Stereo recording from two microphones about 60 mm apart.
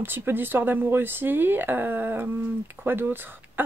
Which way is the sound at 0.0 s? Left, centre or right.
Right.